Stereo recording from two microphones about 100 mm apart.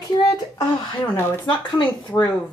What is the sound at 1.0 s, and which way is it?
Speech, 20° left (ahead or behind).